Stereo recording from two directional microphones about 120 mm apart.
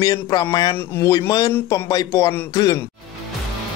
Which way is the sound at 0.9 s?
20° left (ahead or behind).